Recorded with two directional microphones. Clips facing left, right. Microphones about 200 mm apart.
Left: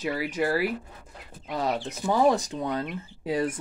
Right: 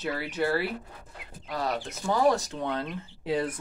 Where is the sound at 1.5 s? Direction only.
20° left (ahead or behind).